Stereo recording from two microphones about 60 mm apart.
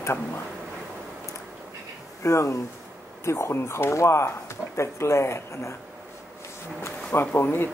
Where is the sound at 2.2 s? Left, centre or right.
Left.